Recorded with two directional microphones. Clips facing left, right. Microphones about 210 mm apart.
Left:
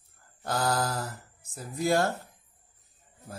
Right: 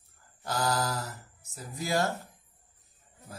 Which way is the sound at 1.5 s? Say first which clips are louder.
Left 6 dB; 50° left (ahead or behind).